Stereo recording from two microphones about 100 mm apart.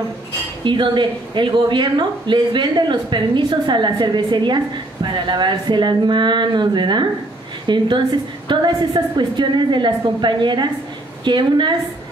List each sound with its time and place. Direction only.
0.7 s speech: 50° right (ahead or behind)